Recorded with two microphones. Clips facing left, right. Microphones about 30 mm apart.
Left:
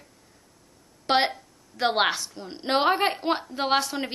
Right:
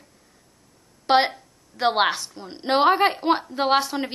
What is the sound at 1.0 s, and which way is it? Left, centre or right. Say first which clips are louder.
A woman's voice: right 4 dB; centre.